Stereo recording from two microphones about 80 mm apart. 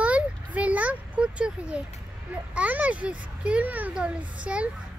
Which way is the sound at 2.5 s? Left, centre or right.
Centre.